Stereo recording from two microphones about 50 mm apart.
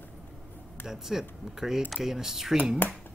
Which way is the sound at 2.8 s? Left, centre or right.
Left.